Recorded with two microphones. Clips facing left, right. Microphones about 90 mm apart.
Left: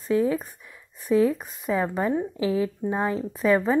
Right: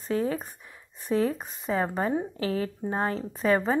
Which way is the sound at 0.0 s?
Centre (ahead or behind).